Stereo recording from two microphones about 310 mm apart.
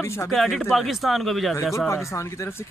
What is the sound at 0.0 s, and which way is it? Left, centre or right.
Speech, centre.